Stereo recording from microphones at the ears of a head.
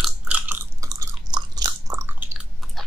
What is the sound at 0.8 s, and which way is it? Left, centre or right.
Chewing, right.